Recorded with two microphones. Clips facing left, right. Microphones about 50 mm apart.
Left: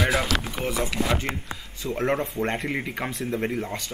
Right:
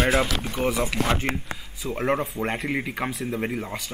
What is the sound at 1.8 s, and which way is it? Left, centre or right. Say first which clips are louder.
Speech: even; centre.